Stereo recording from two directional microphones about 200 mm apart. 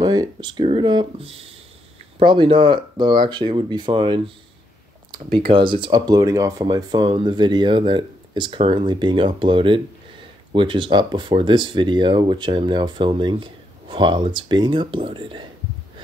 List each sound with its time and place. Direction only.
0.0 s speech: 20° right (ahead or behind)